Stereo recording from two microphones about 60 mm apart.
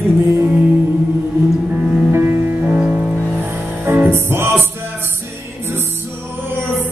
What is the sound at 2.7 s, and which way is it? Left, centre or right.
Music, centre.